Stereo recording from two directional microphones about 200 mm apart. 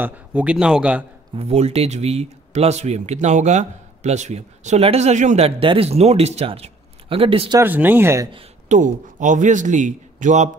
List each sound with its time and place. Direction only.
0.0 s speech: 5° right (ahead or behind)
1.3 s speech: 30° right (ahead or behind)
7.6 s speech: 10° right (ahead or behind)
8.3 s a man's voice: 30° right (ahead or behind)